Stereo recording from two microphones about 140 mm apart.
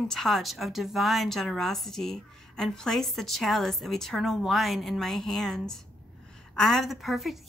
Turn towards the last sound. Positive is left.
turn(degrees=0)  # may be behind; listen again after turning